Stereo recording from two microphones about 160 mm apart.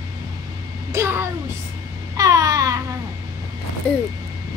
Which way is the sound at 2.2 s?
20° right (ahead or behind).